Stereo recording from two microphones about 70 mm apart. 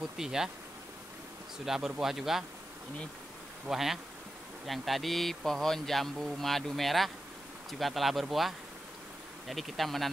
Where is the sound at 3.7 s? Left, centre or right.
Centre.